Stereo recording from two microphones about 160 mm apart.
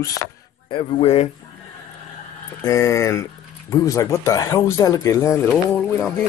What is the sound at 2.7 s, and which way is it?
Speech, 20° left (ahead or behind).